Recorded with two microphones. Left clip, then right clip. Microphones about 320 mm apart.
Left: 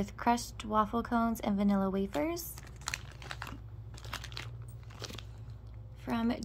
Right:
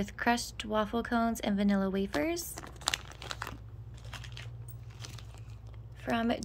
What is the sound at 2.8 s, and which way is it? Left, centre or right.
Crumpling, right.